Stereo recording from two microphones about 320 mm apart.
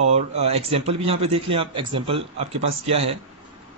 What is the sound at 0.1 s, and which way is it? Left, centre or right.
A man's voice, centre.